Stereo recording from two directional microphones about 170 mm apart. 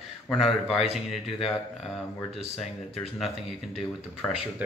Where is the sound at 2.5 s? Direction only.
Centre (ahead or behind).